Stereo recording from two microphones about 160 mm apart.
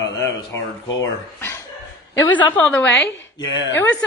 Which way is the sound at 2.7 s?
10° left (ahead or behind).